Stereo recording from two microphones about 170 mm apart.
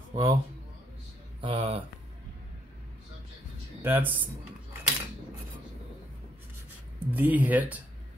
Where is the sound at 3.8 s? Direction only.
10° right (ahead or behind).